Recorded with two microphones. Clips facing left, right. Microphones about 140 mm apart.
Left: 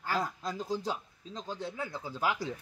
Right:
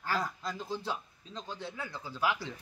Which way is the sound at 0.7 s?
40° left (ahead or behind).